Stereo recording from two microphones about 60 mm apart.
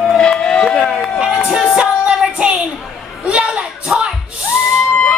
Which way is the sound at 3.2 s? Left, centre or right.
Centre.